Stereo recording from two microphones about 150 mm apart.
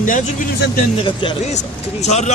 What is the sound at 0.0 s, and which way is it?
Speech, 60° left (ahead or behind).